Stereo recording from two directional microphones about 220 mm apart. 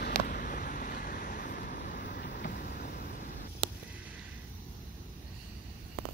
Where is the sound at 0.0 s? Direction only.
40° left (ahead or behind).